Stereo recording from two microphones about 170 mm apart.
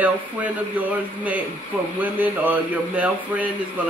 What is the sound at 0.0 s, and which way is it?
Speech, 10° right (ahead or behind).